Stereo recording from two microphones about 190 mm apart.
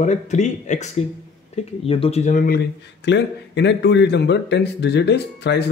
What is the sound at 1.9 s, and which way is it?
A man's voice, 30° left (ahead or behind).